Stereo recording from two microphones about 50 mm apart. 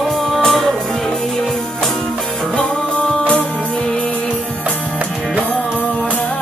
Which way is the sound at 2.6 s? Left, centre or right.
Left.